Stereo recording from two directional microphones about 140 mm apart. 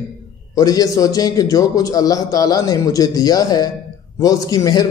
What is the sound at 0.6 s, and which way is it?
A man's voice, 25° left (ahead or behind).